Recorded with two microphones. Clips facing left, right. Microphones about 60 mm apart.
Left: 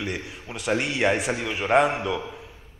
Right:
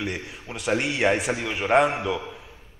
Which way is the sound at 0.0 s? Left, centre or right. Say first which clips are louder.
Even; centre.